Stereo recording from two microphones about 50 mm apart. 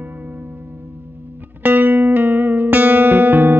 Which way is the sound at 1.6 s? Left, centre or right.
Right.